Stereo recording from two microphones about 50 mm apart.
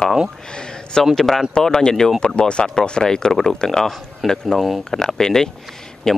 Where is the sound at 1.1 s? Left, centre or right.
Centre.